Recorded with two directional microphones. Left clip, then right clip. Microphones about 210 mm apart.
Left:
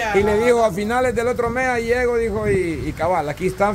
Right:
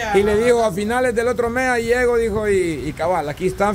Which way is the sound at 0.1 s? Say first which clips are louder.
Right 2 dB; 10° right (ahead or behind).